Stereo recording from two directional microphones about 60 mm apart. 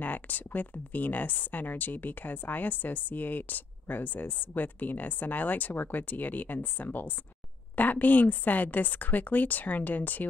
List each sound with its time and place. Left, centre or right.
0.0 s speech: left